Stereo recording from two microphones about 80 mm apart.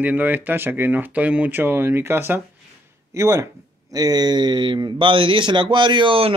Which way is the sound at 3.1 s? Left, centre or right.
Right.